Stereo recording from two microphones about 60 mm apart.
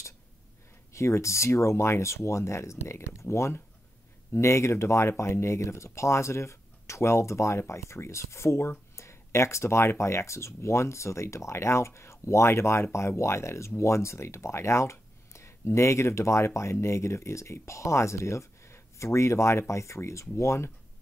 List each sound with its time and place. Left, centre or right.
0.9 s speech: left